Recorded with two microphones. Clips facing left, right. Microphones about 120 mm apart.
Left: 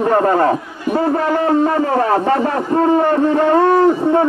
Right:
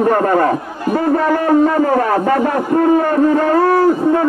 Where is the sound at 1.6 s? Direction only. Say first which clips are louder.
Right 2 dB; 25° left (ahead or behind).